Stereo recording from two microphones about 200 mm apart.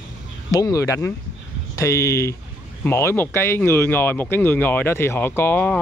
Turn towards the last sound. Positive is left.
turn(degrees=10)  # may be behind; listen again after turning